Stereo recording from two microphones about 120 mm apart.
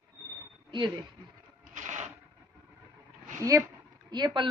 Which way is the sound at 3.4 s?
25° right (ahead or behind).